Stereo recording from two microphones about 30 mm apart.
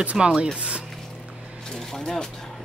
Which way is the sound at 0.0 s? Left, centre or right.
Right.